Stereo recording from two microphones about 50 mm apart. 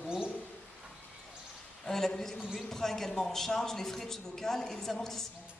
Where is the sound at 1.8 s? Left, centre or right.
Centre.